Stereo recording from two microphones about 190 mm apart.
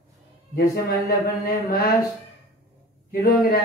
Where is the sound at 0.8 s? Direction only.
55° left (ahead or behind).